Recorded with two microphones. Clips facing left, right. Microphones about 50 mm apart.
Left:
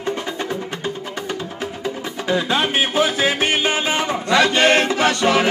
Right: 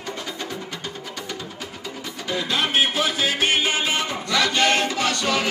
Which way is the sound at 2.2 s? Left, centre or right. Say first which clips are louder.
Left 5 dB; left.